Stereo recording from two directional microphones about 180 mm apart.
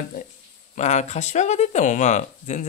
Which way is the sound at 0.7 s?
40° left (ahead or behind).